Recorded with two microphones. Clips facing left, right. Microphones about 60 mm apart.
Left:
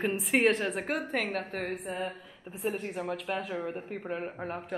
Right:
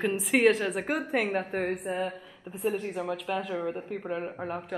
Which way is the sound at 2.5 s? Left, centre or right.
Centre.